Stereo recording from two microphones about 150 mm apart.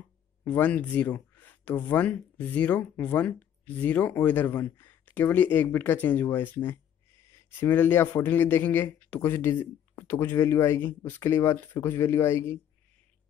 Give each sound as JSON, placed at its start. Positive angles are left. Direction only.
{"t": 0.5, "sound": "speech", "side_deg": 10}